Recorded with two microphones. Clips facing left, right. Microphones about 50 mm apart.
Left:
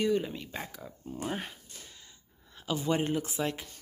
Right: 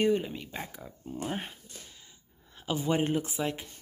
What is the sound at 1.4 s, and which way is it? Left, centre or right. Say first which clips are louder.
Speech: even; centre.